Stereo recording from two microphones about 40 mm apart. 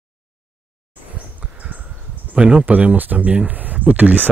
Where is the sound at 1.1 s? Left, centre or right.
Right.